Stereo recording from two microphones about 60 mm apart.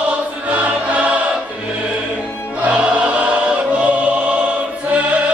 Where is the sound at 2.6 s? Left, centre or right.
Centre.